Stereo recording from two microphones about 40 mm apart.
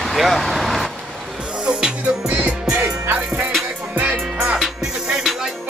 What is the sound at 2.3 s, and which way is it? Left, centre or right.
Music, right.